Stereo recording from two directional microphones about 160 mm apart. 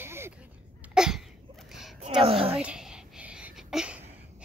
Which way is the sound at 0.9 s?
5° right (ahead or behind).